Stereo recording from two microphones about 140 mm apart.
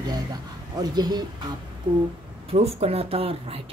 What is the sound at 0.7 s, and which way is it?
Speech, 30° right (ahead or behind).